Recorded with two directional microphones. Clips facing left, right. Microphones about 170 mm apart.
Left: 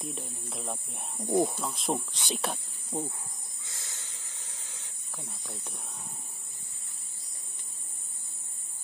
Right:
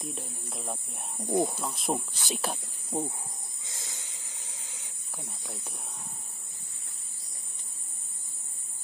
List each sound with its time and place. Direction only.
0.0 s speech: centre (ahead or behind)
2.9 s speech: 20° right (ahead or behind)
3.6 s snake: 20° right (ahead or behind)
5.4 s speech: 5° right (ahead or behind)